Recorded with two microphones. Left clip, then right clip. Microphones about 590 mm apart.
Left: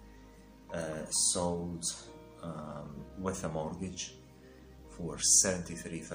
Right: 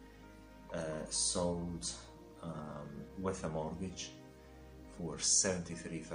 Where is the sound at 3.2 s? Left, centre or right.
Right.